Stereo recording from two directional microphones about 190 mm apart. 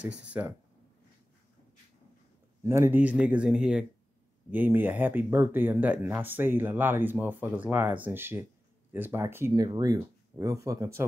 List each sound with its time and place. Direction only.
0.3 s speech: 10° right (ahead or behind)
2.6 s speech: 15° right (ahead or behind)